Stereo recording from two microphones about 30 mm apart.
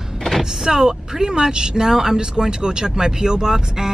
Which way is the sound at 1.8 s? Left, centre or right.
Centre.